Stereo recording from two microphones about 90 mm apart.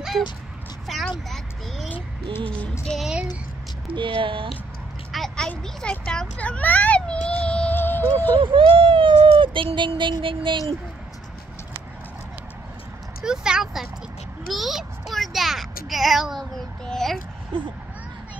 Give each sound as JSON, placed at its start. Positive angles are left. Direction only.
{"t": 0.9, "sound": "a sound", "side_deg": 0}
{"t": 2.3, "sound": "music", "side_deg": 15}
{"t": 2.8, "sound": "child singing", "side_deg": 5}
{"t": 3.9, "sound": "speech", "side_deg": -70}
{"t": 5.1, "sound": "a sound", "side_deg": 5}
{"t": 5.6, "sound": "a child's voice", "side_deg": 10}
{"t": 8.4, "sound": "speech", "side_deg": -70}
{"t": 13.2, "sound": "speech", "side_deg": -5}
{"t": 14.5, "sound": "music", "side_deg": 0}
{"t": 17.5, "sound": "speech", "side_deg": -70}